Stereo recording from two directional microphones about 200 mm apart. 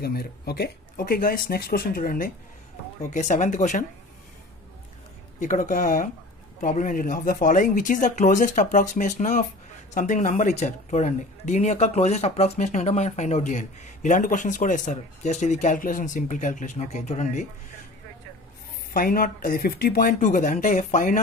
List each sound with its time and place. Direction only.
0.0 s speech: 50° left (ahead or behind)
5.4 s speech: 40° left (ahead or behind)
18.9 s speech: 45° left (ahead or behind)